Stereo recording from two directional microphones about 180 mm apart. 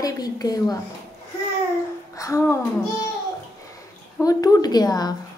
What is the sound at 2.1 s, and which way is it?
Speech, 15° left (ahead or behind).